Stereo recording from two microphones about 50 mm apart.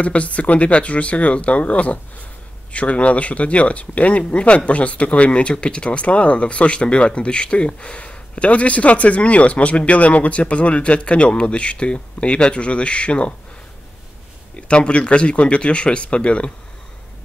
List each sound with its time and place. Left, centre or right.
0.0 s speech: left
14.5 s speech: left